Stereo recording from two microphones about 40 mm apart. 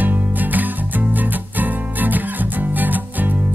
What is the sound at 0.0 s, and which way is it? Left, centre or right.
Music, right.